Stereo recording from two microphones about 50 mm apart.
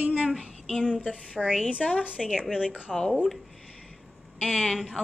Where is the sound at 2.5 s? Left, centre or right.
Centre.